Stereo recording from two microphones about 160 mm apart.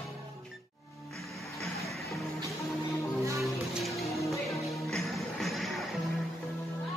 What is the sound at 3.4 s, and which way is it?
Music, centre (ahead or behind).